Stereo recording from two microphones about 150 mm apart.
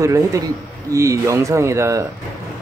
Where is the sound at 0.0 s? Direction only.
20° right (ahead or behind).